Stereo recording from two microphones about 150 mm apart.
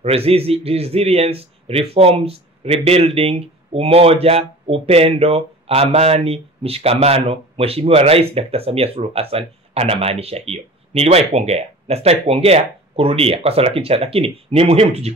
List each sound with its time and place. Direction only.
0.0 s a man's voice: 40° right (ahead or behind)